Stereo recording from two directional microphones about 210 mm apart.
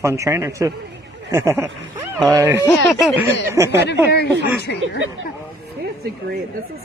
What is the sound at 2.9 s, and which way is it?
Speech, centre (ahead or behind).